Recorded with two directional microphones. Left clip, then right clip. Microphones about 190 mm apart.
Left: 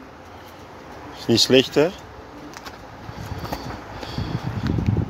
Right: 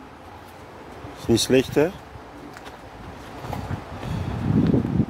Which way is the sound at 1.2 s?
10° right (ahead or behind).